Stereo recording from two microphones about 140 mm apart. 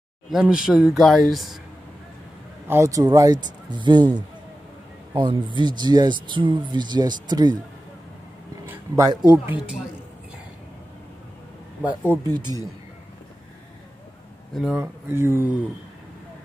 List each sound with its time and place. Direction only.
0.3 s speech: 5° right (ahead or behind)
2.7 s a man's voice: 20° right (ahead or behind)
8.6 s speech: 20° right (ahead or behind)
12.4 s a man's voice: 30° right (ahead or behind)
14.5 s speech: 5° right (ahead or behind)
14.8 s speech: 15° right (ahead or behind)